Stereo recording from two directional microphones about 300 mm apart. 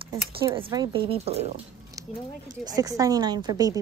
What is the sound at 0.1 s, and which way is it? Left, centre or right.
Speech, centre.